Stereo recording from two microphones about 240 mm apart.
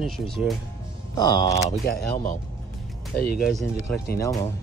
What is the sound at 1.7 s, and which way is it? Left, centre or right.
Speech, left.